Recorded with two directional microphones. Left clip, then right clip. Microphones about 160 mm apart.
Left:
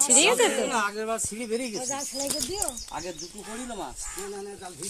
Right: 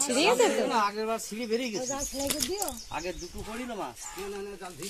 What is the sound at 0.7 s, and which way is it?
Speech, 25° right (ahead or behind).